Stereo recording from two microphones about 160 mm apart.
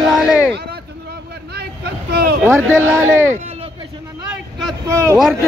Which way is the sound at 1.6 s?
85° right.